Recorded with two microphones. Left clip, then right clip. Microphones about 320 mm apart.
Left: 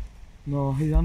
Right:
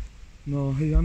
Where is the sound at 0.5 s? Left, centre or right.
Centre.